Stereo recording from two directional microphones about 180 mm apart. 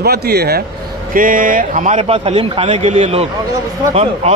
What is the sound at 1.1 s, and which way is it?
A man's voice, 50° right (ahead or behind).